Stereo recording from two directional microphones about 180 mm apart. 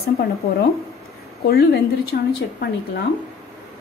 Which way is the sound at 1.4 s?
60° left (ahead or behind).